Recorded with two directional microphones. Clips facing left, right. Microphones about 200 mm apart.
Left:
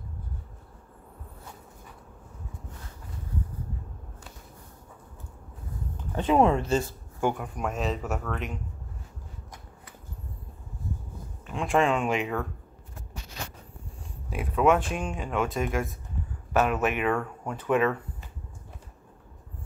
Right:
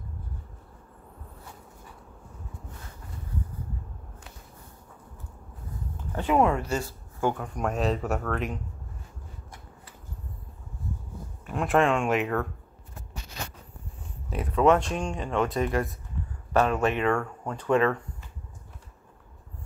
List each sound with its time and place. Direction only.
6.1 s speech: 20° left (ahead or behind)
7.5 s speech: centre (ahead or behind)
11.4 s speech: 5° right (ahead or behind)
14.3 s speech: 5° left (ahead or behind)